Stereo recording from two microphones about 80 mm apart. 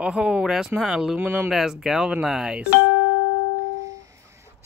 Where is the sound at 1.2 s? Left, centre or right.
Right.